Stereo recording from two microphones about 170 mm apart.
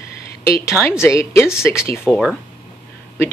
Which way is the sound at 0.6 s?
15° left (ahead or behind).